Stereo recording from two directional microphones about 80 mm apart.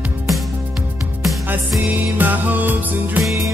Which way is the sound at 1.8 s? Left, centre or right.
Right.